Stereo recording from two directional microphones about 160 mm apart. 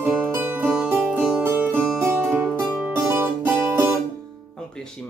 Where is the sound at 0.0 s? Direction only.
10° right (ahead or behind).